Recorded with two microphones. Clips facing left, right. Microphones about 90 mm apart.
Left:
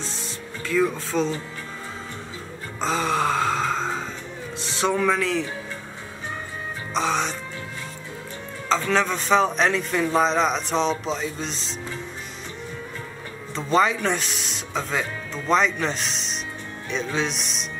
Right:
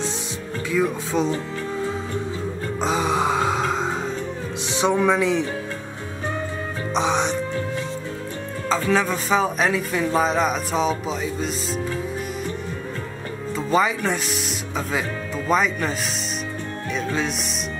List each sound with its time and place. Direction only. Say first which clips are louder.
0.7 s speech: even; 10° right (ahead or behind)
2.8 s music: right 1 dB; 15° right (ahead or behind)
4.7 s speech: right 3 dB; 15° right (ahead or behind)
6.9 s music: right 3 dB; 20° right (ahead or behind)
8.6 s speech: right 1 dB; 5° right (ahead or behind)
13.6 s speech: even; 5° right (ahead or behind)
16.9 s music: even; 5° right (ahead or behind)